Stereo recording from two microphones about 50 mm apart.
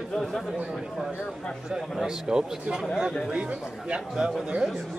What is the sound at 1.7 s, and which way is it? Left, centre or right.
Speech, centre.